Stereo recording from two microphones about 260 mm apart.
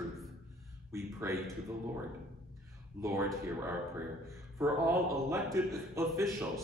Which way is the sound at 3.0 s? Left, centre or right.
Centre.